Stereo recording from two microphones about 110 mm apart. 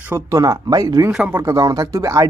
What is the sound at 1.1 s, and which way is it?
Speech, 10° right (ahead or behind).